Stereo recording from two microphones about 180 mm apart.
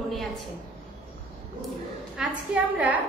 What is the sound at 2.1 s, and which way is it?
Speech, 5° right (ahead or behind).